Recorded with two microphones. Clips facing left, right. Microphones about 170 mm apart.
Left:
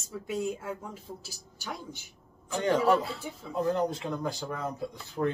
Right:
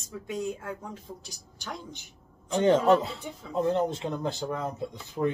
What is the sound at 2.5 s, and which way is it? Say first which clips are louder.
Speech: right 4 dB; 20° right (ahead or behind).